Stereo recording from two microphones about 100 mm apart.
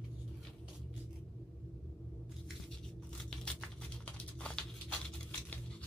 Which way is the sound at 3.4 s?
10° left (ahead or behind).